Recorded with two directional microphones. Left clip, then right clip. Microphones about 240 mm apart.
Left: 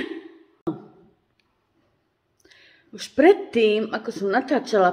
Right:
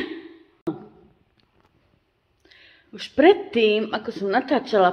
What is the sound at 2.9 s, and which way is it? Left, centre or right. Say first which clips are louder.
Speech: even; centre.